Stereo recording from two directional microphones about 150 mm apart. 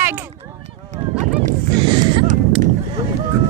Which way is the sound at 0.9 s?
55° right (ahead or behind).